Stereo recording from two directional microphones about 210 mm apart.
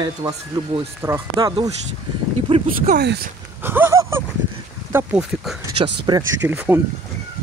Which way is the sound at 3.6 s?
10° right (ahead or behind).